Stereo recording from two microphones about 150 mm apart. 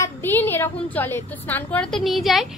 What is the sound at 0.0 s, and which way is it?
A woman's voice, 15° left (ahead or behind).